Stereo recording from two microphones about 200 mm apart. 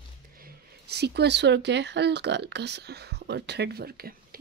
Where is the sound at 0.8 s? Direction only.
55° right (ahead or behind).